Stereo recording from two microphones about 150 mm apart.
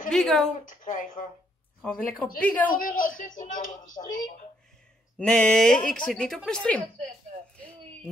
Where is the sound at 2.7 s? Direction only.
70° left (ahead or behind).